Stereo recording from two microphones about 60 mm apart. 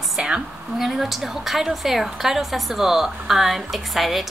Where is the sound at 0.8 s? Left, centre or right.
Centre.